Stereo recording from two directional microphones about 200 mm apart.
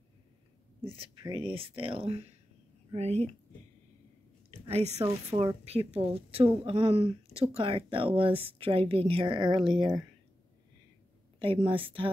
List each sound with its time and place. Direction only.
0.8 s a woman's voice: 25° right (ahead or behind)
4.5 s a sound: 30° right (ahead or behind)
5.3 s a woman's voice: 20° right (ahead or behind)
11.3 s a woman's voice: 25° right (ahead or behind)